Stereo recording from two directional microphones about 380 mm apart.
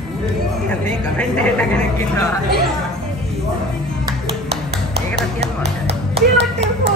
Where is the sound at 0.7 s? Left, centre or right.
Centre.